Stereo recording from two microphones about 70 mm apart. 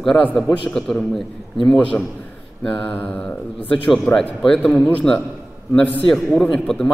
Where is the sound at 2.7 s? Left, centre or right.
Left.